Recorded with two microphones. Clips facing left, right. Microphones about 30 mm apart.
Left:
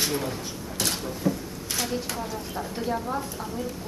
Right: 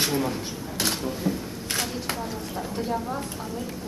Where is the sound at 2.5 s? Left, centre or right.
Centre.